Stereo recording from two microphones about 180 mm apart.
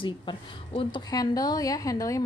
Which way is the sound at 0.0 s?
25° left (ahead or behind).